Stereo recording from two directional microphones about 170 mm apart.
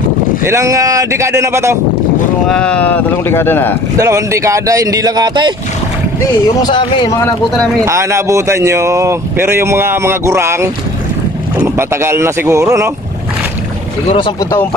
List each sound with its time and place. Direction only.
0.5 s speech: 15° right (ahead or behind)
2.4 s speech: 5° left (ahead or behind)
4.0 s speech: 15° right (ahead or behind)
6.6 s speech: 30° left (ahead or behind)
7.8 s speech: 15° right (ahead or behind)
11.9 s speech: 15° right (ahead or behind)
14.1 s speech: 30° left (ahead or behind)